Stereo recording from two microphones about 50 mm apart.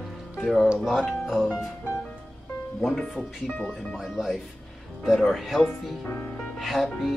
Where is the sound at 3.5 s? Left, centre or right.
Left.